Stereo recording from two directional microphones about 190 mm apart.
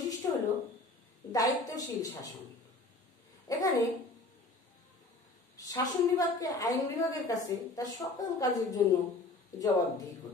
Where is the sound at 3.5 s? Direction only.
20° left (ahead or behind).